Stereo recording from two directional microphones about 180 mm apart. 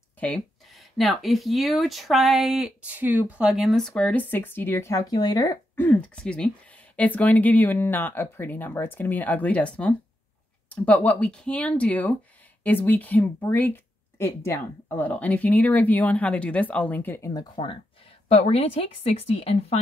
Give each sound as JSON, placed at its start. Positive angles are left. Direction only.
{"t": 0.2, "sound": "speech", "side_deg": 5}
{"t": 11.1, "sound": "speech", "side_deg": 5}
{"t": 18.3, "sound": "a woman's voice", "side_deg": 35}